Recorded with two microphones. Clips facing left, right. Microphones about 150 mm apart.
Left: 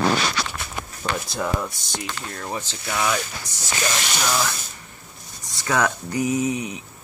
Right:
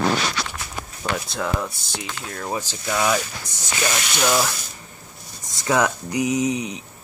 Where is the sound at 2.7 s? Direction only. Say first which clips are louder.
Right 2 dB; 15° right (ahead or behind).